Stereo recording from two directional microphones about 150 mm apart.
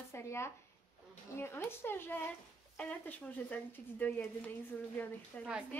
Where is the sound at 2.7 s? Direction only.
10° left (ahead or behind).